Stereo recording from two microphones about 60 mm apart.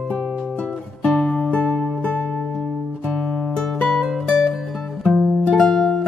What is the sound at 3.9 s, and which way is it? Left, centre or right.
Music, centre.